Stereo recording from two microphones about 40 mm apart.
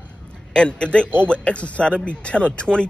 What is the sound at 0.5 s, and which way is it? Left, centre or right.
A man's voice, left.